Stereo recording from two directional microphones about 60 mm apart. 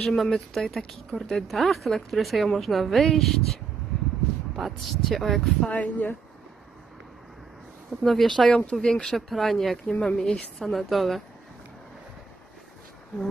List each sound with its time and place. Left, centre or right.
0.0 s speech: centre
5.7 s speech: left
8.0 s speech: centre
8.5 s speech: centre
8.7 s speech: centre
9.8 s speech: centre